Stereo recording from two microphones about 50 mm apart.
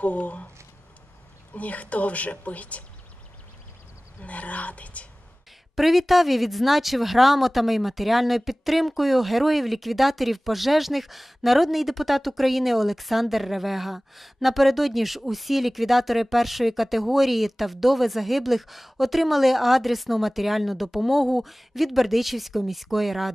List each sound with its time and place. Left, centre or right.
0.0 s speech: left
1.5 s a woman's voice: left
4.2 s a woman's voice: left
5.8 s speech: centre